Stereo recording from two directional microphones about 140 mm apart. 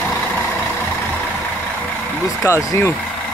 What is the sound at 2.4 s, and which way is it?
Speech, 20° left (ahead or behind).